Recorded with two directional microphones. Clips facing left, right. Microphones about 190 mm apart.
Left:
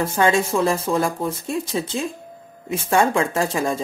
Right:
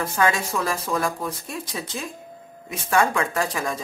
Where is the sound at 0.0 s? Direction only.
25° left (ahead or behind).